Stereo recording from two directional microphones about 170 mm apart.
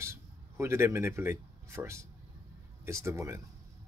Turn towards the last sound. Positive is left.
turn(degrees=-15)  # may be behind; listen again after turning